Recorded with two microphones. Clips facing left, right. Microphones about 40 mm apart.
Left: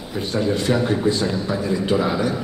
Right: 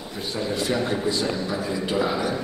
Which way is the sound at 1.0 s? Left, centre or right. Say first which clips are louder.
Left 4 dB; left.